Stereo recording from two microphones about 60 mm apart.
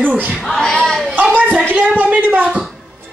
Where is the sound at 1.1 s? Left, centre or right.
Right.